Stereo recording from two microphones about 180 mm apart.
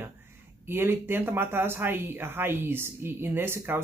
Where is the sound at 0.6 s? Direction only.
10° right (ahead or behind).